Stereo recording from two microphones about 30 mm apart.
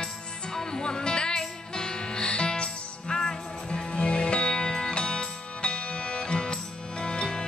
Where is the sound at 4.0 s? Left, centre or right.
Left.